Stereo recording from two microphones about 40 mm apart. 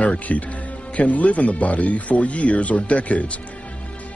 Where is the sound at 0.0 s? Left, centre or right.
Left.